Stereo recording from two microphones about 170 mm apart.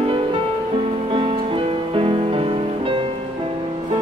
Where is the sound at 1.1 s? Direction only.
30° right (ahead or behind).